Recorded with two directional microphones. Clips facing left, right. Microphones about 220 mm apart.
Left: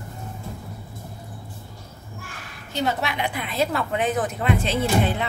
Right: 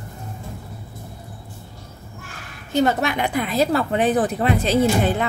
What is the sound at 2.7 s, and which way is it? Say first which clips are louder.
A woman's voice: right 6 dB; 50° right (ahead or behind).